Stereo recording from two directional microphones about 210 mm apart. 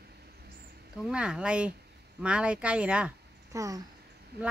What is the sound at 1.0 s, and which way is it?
A woman's voice, 5° right (ahead or behind).